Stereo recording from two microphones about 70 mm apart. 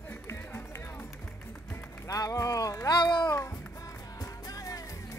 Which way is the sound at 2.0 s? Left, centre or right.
Left.